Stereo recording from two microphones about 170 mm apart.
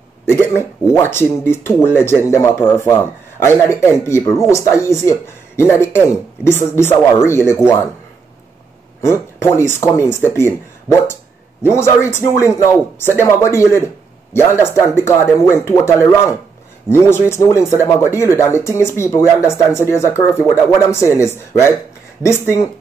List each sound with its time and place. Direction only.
0.2 s speech: 15° left (ahead or behind)
9.0 s speech: 15° left (ahead or behind)